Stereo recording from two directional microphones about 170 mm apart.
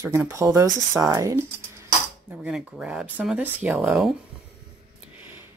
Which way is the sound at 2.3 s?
5° right (ahead or behind).